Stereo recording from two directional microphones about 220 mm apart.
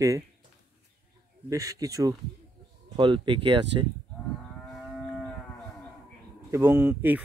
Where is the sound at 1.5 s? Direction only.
15° right (ahead or behind).